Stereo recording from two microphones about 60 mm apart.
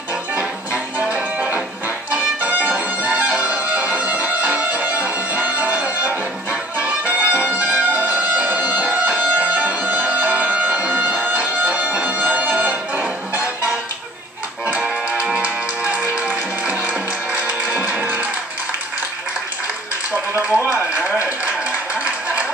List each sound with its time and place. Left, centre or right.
1.1 s music: right
14.8 s music: centre
20.3 s a sound: right